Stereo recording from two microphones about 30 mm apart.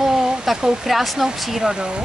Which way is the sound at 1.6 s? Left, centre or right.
Right.